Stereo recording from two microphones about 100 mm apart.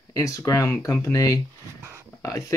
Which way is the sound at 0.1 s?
35° left (ahead or behind).